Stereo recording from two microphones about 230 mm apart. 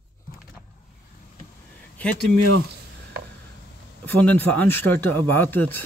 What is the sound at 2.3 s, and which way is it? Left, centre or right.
Speech, right.